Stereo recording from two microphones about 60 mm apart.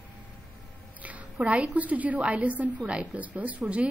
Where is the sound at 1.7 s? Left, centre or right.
Right.